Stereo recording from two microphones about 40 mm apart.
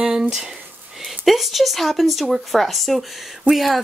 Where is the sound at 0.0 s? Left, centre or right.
Centre.